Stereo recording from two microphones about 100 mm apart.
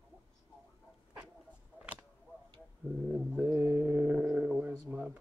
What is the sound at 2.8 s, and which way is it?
Speech, 5° right (ahead or behind).